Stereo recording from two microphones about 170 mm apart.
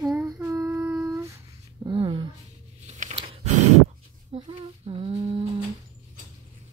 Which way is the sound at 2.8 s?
40° right (ahead or behind).